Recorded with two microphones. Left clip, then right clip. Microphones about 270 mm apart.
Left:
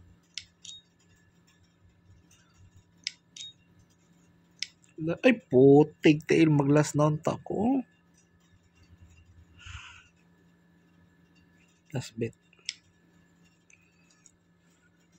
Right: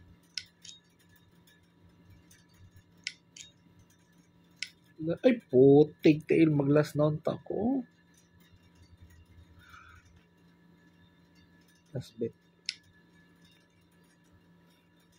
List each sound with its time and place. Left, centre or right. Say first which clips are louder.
0.3 s scissors: even; centre
3.0 s scissors: left 3 dB; centre
4.6 s a sound: left 3 dB; centre
5.0 s speech: left 2 dB; left
11.9 s speech: left 2 dB; left
12.7 s scissors: even; centre